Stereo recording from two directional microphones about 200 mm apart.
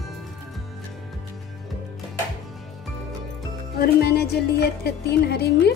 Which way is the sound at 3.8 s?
50° left (ahead or behind).